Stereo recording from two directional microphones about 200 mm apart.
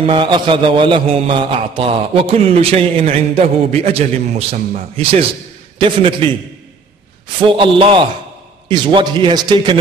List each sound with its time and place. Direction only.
0.0 s mantra: 25° right (ahead or behind)
7.3 s mantra: 25° right (ahead or behind)